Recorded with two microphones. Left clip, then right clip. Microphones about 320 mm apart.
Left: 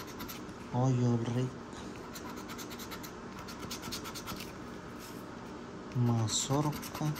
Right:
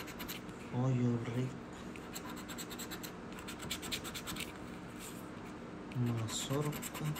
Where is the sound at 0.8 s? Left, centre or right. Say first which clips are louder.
Left 3 dB; centre.